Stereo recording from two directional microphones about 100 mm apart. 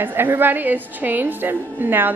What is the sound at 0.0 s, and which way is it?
A woman's voice, 20° right (ahead or behind).